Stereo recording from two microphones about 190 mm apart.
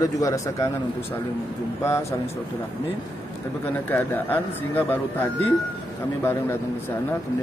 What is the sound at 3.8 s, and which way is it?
Speech, 10° left (ahead or behind).